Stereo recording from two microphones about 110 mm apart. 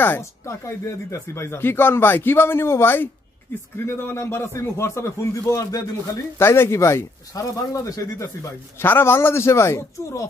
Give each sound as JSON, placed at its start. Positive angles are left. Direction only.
{"t": 0.0, "sound": "speech", "side_deg": 20}